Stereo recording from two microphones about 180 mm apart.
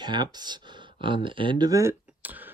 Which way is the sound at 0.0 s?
25° right (ahead or behind).